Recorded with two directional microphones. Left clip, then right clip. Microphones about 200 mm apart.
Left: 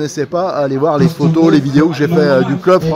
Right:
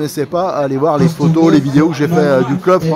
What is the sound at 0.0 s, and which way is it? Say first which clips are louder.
Speech: even; 5° right (ahead or behind).